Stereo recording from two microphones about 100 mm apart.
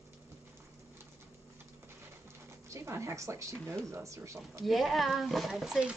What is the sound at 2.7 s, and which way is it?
Speech, 30° right (ahead or behind).